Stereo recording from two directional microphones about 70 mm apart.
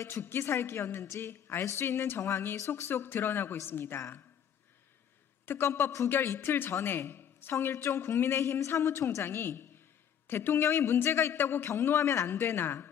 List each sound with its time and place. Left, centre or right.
0.0 s a man's voice: left
2.7 s a man's voice: left
5.4 s a man's voice: left